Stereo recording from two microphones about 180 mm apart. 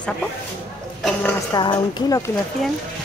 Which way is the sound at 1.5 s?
25° left (ahead or behind).